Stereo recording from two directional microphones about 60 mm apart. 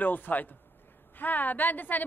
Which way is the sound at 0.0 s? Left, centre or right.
Left.